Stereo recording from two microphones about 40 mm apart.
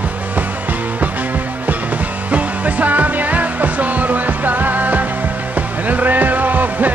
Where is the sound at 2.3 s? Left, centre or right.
Right.